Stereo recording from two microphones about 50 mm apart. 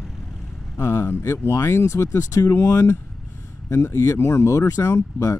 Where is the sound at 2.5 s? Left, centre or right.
Left.